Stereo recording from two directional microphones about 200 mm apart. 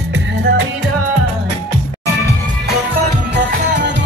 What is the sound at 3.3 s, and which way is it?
Music, 60° right (ahead or behind).